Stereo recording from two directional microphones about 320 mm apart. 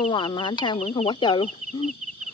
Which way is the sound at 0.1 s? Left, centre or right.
Centre.